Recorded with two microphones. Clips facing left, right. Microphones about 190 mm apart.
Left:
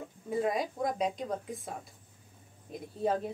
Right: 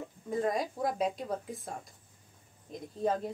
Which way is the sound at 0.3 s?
5° left (ahead or behind).